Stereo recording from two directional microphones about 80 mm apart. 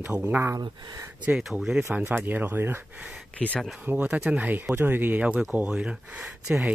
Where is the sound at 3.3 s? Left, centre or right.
Centre.